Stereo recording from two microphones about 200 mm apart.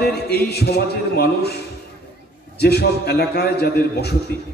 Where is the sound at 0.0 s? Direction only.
55° left (ahead or behind).